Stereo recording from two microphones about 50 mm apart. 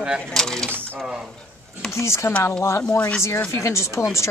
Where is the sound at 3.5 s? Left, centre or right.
Left.